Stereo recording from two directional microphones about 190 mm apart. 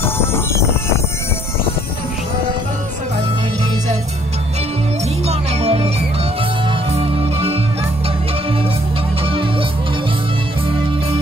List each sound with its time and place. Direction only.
0.0 s music: 15° left (ahead or behind)
5.2 s music: 35° right (ahead or behind)
6.9 s music: 30° right (ahead or behind)
9.2 s music: 30° right (ahead or behind)